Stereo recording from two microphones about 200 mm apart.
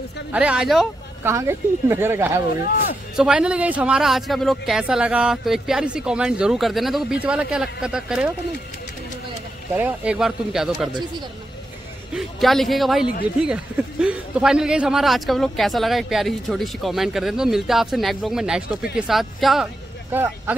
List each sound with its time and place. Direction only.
0.3 s a man's voice: 5° right (ahead or behind)
9.8 s a man's voice: 5° right (ahead or behind)
10.9 s speech: 20° right (ahead or behind)
12.1 s a man's voice: centre (ahead or behind)